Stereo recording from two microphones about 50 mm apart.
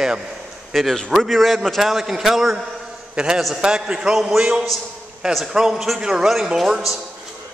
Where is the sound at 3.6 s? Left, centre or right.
Centre.